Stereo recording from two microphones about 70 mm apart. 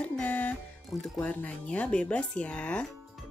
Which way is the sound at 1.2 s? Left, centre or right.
Centre.